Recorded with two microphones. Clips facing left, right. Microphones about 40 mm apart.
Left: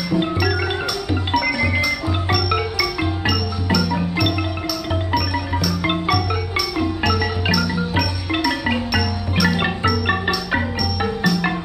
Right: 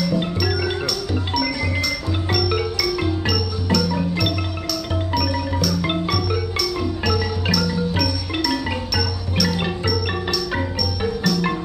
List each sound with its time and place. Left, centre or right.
0.1 s music: centre
1.8 s music: centre